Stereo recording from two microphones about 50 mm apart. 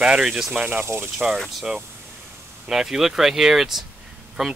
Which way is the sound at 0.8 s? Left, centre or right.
Right.